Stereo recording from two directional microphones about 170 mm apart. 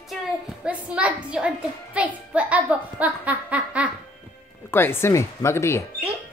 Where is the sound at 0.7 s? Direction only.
10° right (ahead or behind).